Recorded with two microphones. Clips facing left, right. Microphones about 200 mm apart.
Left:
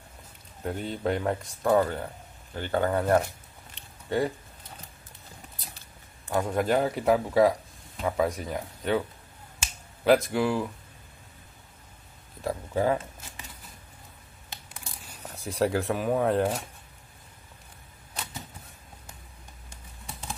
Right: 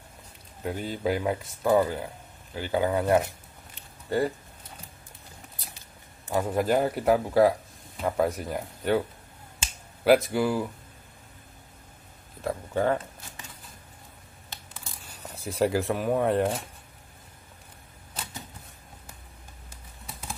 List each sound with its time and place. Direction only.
0.6 s speech: centre (ahead or behind)
3.7 s a sound: centre (ahead or behind)
6.3 s speech: 5° right (ahead or behind)
10.0 s speech: centre (ahead or behind)
12.4 s speech: centre (ahead or behind)
14.8 s speech: centre (ahead or behind)